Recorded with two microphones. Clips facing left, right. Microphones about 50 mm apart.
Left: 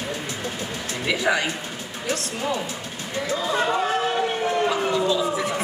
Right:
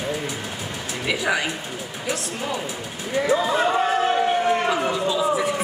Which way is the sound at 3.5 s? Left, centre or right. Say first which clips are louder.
Right 2 dB; centre.